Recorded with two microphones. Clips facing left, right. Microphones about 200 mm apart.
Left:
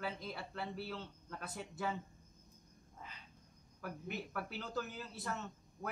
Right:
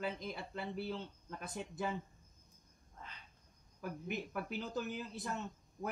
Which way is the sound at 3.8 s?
20° right (ahead or behind).